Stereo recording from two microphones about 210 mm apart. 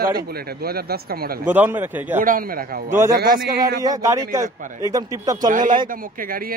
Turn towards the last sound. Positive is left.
turn(degrees=-45)  # may be behind; listen again after turning